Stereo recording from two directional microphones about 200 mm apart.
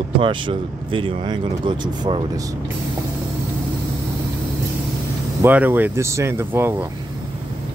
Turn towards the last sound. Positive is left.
turn(degrees=-10)  # may be behind; listen again after turning